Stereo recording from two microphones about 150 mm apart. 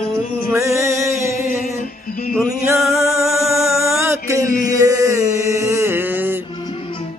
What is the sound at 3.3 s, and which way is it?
Music, centre (ahead or behind).